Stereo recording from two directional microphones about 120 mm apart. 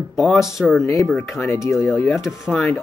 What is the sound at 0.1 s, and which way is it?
Speech, 5° right (ahead or behind).